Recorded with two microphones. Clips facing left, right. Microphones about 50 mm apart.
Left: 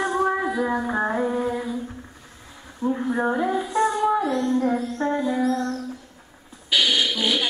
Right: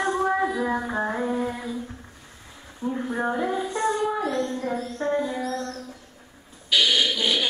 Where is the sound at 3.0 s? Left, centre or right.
Centre.